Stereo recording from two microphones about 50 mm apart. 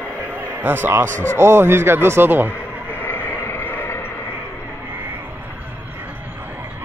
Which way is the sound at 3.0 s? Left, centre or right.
Left.